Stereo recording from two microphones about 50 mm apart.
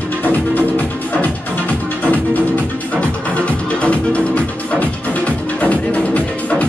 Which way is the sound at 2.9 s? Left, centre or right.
Left.